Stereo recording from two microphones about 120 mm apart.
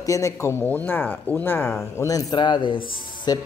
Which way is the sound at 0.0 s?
25° left (ahead or behind).